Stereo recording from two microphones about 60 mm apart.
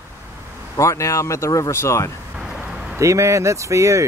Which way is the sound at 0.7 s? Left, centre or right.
Left.